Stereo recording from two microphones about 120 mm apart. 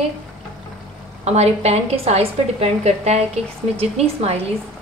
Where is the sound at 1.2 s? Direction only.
65° right (ahead or behind).